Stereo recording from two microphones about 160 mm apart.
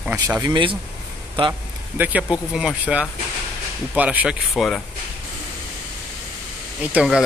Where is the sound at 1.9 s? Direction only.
10° right (ahead or behind).